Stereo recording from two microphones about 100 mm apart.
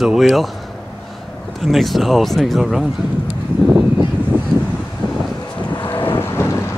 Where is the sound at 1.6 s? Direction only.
Centre (ahead or behind).